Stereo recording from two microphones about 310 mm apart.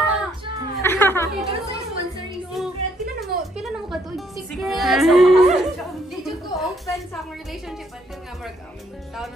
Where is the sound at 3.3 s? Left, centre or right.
Right.